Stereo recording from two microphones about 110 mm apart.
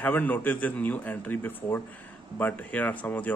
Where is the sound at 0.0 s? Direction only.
15° left (ahead or behind).